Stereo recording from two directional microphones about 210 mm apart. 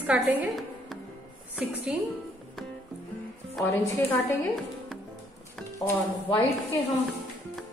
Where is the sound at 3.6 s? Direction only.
10° left (ahead or behind).